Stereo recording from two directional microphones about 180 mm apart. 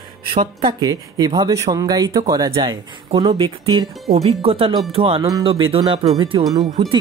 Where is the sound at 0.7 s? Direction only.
20° right (ahead or behind).